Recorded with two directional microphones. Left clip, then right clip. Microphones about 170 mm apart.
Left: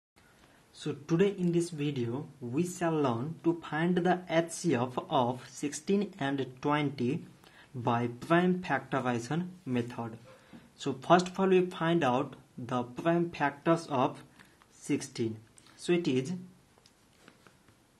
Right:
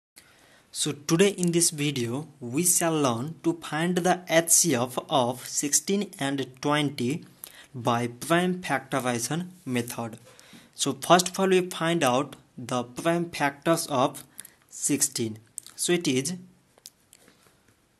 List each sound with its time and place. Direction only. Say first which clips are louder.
0.7 s speech: right 6 dB; 35° right (ahead or behind)